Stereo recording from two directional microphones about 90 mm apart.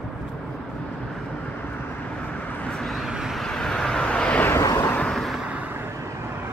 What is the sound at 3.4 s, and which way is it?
Vehicle, 5° left (ahead or behind).